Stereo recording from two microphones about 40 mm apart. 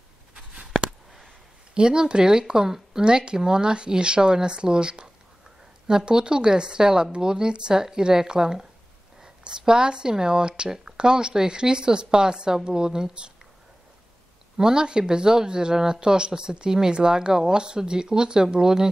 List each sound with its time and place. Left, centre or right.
0.3 s a sound: right
1.8 s speech: right
14.6 s speech: centre